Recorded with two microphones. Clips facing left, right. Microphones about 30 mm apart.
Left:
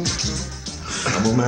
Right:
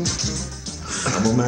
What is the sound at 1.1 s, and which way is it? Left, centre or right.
Music, centre.